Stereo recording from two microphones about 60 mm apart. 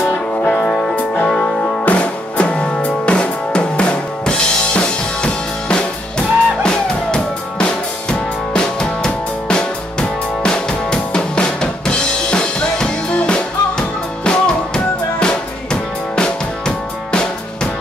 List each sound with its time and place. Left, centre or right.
0.7 s music: centre
0.9 s music: left
4.3 s drum: centre